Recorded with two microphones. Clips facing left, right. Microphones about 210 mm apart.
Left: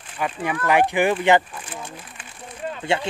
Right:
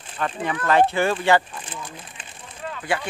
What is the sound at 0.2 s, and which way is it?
Speech, 10° left (ahead or behind).